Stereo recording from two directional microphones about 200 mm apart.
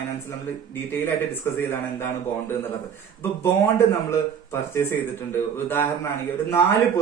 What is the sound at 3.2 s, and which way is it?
Speech, 10° left (ahead or behind).